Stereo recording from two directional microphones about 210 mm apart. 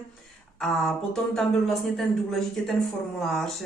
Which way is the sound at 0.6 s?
Centre (ahead or behind).